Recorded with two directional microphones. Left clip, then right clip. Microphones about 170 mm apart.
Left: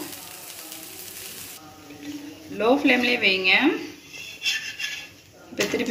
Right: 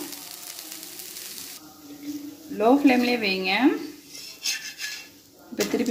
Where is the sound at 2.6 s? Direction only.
50° right (ahead or behind).